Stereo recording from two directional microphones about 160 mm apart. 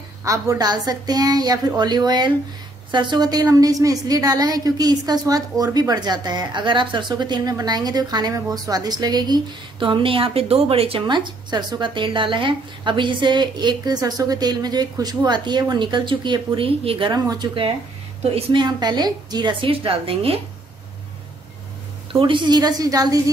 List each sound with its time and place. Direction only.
0.2 s a woman's voice: 20° right (ahead or behind)
22.2 s a woman's voice: 30° right (ahead or behind)